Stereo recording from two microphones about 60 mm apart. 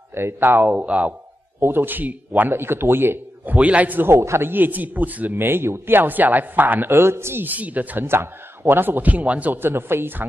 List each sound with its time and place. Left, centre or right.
0.1 s speech: right
0.7 s speech: right
1.6 s speech: right
2.5 s a man's voice: right
3.5 s speech: right
4.1 s a man's voice: right
4.5 s speech: right
5.4 s speech: right
7.4 s speech: right
8.1 s speech: right
9.6 s speech: right